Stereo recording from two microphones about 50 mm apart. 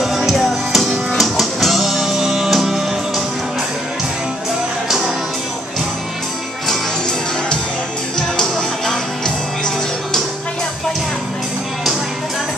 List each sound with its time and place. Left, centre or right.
0.0 s music: centre
4.8 s music: centre
8.4 s music: centre